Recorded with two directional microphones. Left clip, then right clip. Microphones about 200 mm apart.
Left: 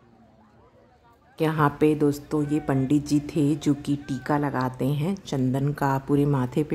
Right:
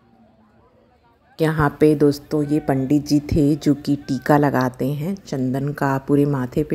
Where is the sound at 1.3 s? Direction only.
15° right (ahead or behind).